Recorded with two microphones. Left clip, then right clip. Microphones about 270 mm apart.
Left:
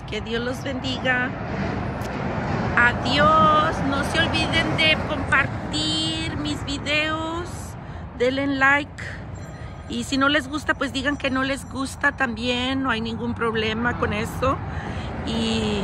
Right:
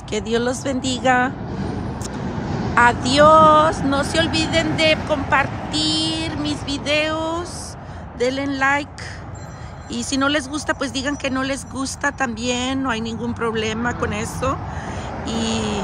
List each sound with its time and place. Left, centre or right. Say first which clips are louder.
0.1 s speech: right 6 dB; centre
1.5 s vehicle: left 1 dB; left
2.7 s speech: right 4 dB; centre
6.6 s music: right 3 dB; centre
8.2 s speech: even; centre
9.8 s speech: right 1 dB; centre